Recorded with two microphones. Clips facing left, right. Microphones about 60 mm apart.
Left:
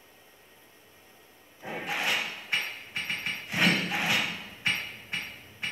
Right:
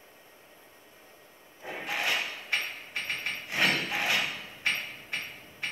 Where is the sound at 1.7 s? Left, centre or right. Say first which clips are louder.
Left 1 dB; centre.